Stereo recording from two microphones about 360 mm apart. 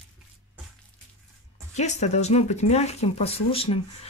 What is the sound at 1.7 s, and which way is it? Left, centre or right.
Speech, centre.